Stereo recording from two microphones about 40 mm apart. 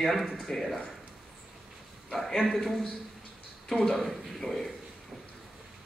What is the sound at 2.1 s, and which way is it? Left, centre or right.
Speech, centre.